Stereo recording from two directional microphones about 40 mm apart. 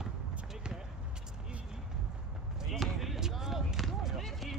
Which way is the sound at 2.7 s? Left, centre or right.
Centre.